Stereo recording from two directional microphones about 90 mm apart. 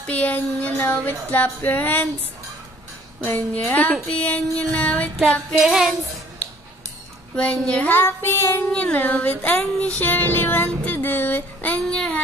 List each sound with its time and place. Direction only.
0.0 s music: 15° left (ahead or behind)
3.3 s music: 20° left (ahead or behind)
5.3 s music: centre (ahead or behind)
7.3 s music: 10° left (ahead or behind)
7.9 s music: 25° left (ahead or behind)
8.7 s music: 15° left (ahead or behind)